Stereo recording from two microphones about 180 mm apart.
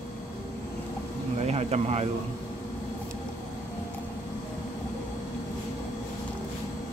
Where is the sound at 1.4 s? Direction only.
35° right (ahead or behind).